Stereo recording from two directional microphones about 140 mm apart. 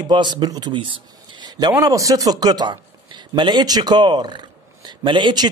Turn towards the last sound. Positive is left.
turn(degrees=-35)  # may be behind; listen again after turning